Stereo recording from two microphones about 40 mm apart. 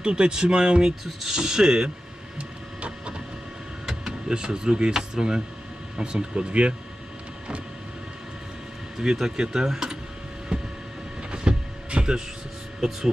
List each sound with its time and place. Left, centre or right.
0.0 s speech: right
2.3 s printer: right
4.3 s speech: centre
8.9 s speech: centre
10.5 s vehicle: right
11.3 s music: right
12.8 s speech: centre